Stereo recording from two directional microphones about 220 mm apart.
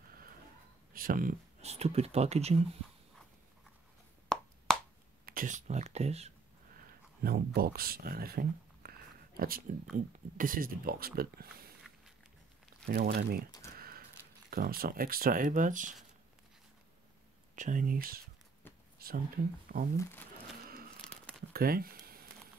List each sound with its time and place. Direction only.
0.9 s speech: 40° right (ahead or behind)
4.3 s a sound: centre (ahead or behind)
4.7 s finger snapping: centre (ahead or behind)
5.2 s speech: 40° right (ahead or behind)
7.2 s speech: 45° right (ahead or behind)
12.8 s speech: 45° right (ahead or behind)
13.7 s a sound: 40° right (ahead or behind)
14.5 s speech: 45° right (ahead or behind)
17.6 s speech: 35° right (ahead or behind)
20.0 s speech: 10° left (ahead or behind)
21.5 s a sound: 45° right (ahead or behind)